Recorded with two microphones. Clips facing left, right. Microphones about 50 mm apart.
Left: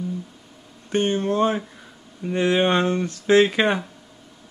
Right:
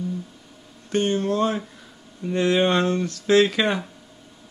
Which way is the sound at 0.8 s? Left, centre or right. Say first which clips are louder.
Left 1 dB; left.